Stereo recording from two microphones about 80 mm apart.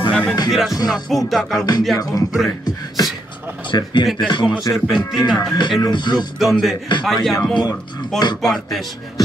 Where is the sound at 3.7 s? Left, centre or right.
Left.